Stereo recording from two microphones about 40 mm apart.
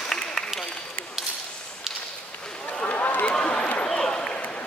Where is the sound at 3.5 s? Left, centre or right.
Left.